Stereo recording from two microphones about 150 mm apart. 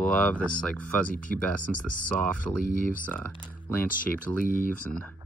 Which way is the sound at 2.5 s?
25° left (ahead or behind).